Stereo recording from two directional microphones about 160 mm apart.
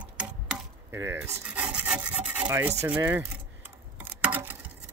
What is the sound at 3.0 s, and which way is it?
Speech, 15° right (ahead or behind).